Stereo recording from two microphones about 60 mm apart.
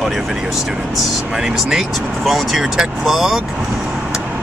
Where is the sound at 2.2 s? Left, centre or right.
Centre.